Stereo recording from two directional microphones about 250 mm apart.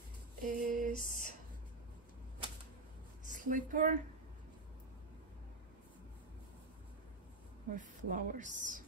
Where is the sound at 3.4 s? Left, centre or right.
Right.